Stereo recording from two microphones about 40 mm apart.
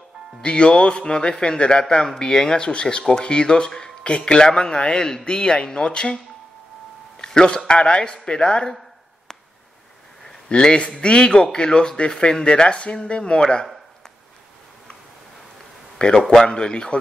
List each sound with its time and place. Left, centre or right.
0.4 s speech: left
7.2 s speech: left
10.5 s speech: left
16.0 s speech: left